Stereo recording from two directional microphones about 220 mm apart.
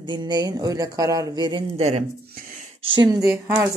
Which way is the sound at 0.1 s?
20° right (ahead or behind).